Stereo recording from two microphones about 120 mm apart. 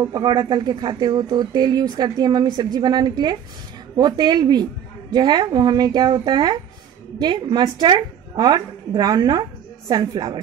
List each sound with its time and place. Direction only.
0.1 s speech: 35° right (ahead or behind)